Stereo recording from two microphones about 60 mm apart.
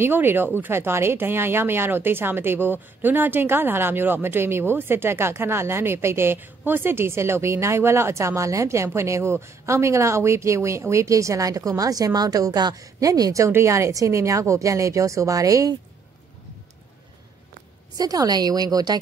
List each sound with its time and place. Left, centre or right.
0.0 s speech: right
13.5 s a woman's voice: right
17.9 s speech: right